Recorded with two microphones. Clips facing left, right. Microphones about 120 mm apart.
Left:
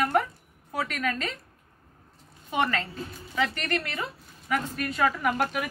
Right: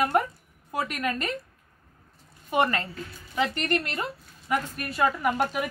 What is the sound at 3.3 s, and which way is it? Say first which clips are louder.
Speech: right 2 dB; 20° right (ahead or behind).